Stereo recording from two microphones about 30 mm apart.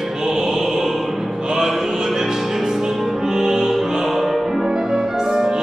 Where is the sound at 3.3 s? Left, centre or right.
Centre.